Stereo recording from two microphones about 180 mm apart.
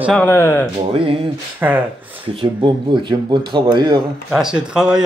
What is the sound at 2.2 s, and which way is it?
Speech, 30° right (ahead or behind).